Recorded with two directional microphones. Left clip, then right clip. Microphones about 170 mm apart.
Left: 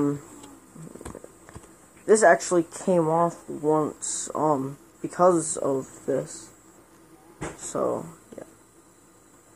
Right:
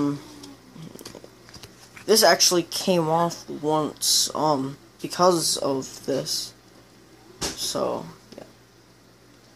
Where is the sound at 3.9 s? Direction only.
Centre (ahead or behind).